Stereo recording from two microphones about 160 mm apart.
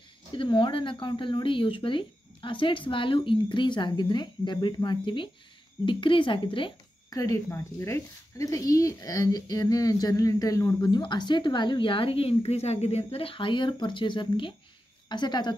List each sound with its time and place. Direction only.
0.3 s a woman's voice: 30° left (ahead or behind)